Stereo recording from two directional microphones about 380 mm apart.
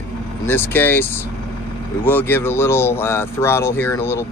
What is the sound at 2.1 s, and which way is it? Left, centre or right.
Speech, centre.